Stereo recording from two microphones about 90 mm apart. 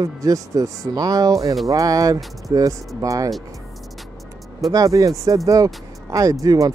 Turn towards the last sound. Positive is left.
turn(degrees=-40)  # may be behind; listen again after turning